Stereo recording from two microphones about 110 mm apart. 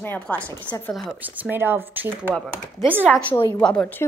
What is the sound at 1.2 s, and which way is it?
Speech, 15° right (ahead or behind).